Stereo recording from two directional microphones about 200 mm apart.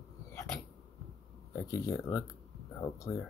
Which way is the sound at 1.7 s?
15° left (ahead or behind).